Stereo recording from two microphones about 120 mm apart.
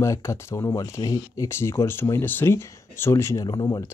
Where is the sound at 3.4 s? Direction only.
35° left (ahead or behind).